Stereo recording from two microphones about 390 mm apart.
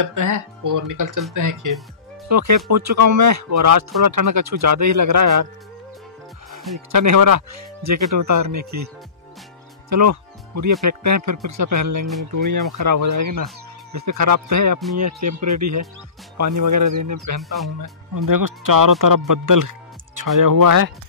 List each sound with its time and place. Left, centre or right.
0.0 s speech: right
6.9 s speech: right
9.8 s speech: right
17.6 s speech: centre
18.1 s speech: right